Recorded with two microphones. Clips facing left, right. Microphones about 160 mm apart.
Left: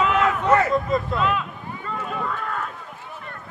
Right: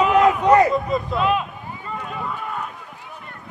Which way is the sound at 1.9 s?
Centre (ahead or behind).